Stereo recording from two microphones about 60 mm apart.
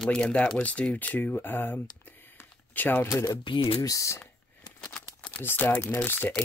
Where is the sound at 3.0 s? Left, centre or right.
Left.